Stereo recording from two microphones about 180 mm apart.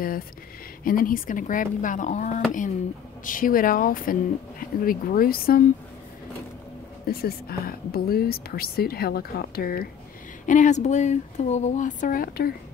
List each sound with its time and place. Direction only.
0.8 s speech: 50° left (ahead or behind)
7.1 s speech: 55° left (ahead or behind)
10.4 s speech: 45° left (ahead or behind)